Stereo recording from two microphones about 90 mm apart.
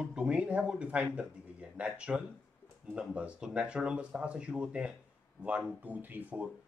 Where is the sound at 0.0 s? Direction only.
10° right (ahead or behind).